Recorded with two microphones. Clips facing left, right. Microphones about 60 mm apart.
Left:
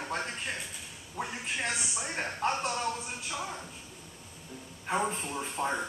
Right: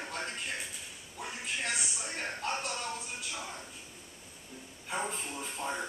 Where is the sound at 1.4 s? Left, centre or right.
Left.